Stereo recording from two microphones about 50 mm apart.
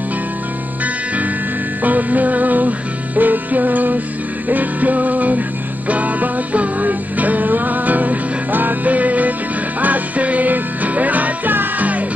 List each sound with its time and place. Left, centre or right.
1.8 s music: right